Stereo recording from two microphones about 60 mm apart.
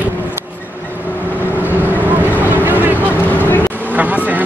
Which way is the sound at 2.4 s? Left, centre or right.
Right.